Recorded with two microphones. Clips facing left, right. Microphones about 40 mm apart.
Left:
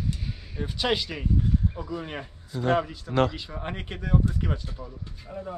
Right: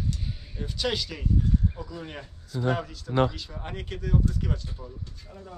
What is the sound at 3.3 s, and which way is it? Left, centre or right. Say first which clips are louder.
Speech: left 3 dB; left.